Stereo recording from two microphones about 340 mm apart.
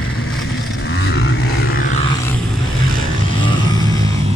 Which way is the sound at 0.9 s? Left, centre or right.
Left.